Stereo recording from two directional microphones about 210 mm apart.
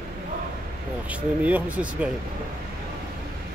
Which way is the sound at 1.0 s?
5° right (ahead or behind).